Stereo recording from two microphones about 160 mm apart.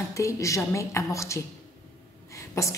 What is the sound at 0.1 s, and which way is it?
A woman's voice, 20° left (ahead or behind).